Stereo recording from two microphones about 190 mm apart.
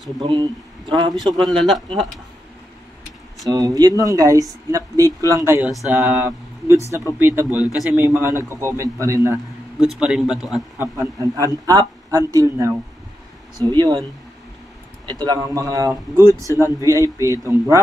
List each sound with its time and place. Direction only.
0.2 s a man's voice: 25° right (ahead or behind)
3.4 s speech: 20° right (ahead or behind)
9.8 s speech: 5° right (ahead or behind)
10.8 s speech: 15° right (ahead or behind)
13.7 s a man's voice: 20° right (ahead or behind)
15.0 s speech: 20° right (ahead or behind)